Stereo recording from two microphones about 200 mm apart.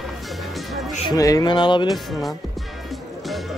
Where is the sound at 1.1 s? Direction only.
15° left (ahead or behind).